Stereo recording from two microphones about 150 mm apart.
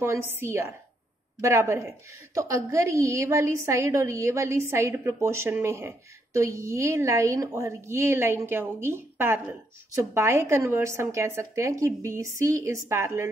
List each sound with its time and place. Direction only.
0.0 s a woman's voice: 15° right (ahead or behind)